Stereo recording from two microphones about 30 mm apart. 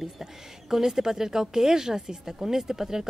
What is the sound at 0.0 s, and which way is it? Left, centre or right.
A woman's voice, centre.